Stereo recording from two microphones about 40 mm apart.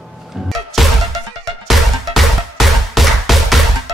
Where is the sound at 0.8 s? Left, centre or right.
Centre.